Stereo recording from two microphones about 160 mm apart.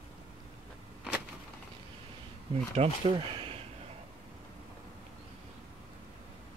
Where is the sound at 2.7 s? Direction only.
35° right (ahead or behind).